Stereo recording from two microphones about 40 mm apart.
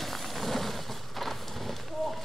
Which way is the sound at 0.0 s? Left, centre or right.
Centre.